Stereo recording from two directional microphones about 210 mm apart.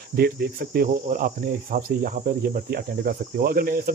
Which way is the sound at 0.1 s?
50° right (ahead or behind).